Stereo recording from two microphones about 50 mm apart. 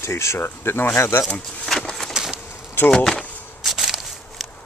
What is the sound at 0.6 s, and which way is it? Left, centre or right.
Speech, left.